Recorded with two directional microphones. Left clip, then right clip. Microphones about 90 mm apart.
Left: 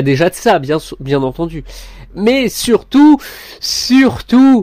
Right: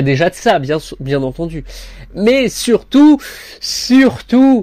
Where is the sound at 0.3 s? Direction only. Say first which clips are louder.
Left 1 dB; 90° left; by 2.8 s 65° left (ahead or behind).